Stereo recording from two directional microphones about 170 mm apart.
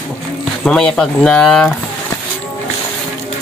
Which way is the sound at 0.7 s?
5° left (ahead or behind).